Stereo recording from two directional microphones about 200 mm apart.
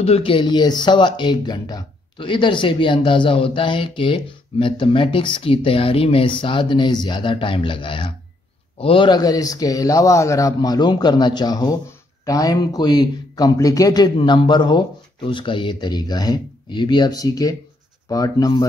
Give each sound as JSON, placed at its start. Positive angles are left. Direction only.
{"t": 0.0, "sound": "speech", "side_deg": 30}